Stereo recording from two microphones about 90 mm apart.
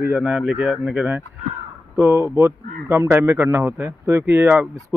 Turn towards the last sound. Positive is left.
turn(degrees=-20)  # may be behind; listen again after turning